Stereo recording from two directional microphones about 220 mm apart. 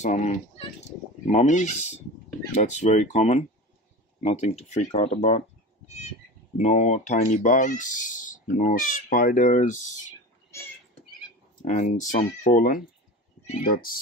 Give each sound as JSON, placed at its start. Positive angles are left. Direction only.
{"t": 0.0, "sound": "speech", "side_deg": 35}
{"t": 6.6, "sound": "speech", "side_deg": 30}
{"t": 11.6, "sound": "speech", "side_deg": 35}